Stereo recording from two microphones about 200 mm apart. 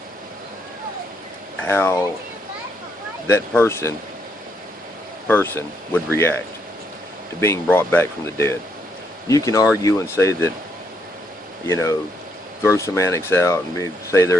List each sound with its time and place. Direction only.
1.6 s speech: 10° left (ahead or behind)
3.3 s speech: 15° left (ahead or behind)
5.3 s speech: 10° left (ahead or behind)
11.6 s speech: 15° left (ahead or behind)